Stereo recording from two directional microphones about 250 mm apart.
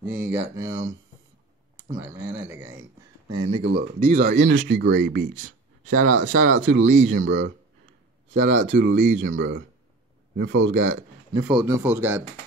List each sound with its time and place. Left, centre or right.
0.1 s speech: centre
3.6 s speech: right
5.3 s speech: right
7.2 s speech: right
11.3 s speech: centre